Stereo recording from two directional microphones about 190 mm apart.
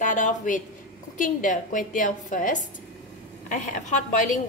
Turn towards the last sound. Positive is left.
turn(degrees=40)  # may be behind; listen again after turning